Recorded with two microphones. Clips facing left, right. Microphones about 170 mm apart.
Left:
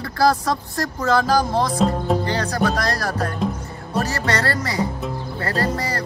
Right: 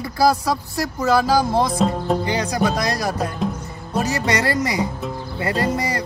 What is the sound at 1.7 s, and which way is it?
Speech, centre (ahead or behind).